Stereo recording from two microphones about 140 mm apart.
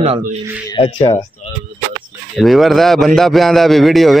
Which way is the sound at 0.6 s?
35° left (ahead or behind).